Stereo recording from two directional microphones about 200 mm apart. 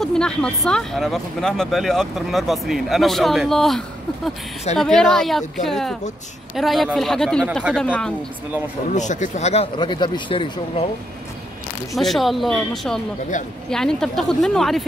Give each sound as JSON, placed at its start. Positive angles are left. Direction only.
{"t": 0.0, "sound": "speech", "side_deg": 5}
{"t": 8.9, "sound": "speech", "side_deg": 35}
{"t": 11.9, "sound": "speech", "side_deg": 0}
{"t": 13.4, "sound": "speech", "side_deg": 40}
{"t": 13.7, "sound": "speech", "side_deg": 5}